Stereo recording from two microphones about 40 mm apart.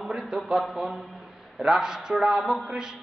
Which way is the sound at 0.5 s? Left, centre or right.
Centre.